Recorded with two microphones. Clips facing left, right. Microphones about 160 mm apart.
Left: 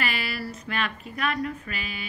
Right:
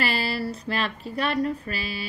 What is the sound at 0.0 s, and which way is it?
A woman's voice, 35° right (ahead or behind).